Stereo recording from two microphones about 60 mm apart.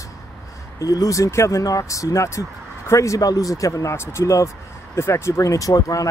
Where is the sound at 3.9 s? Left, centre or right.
Left.